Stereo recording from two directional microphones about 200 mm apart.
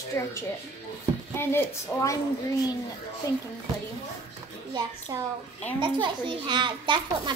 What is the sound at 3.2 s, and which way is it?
Speech, 15° left (ahead or behind).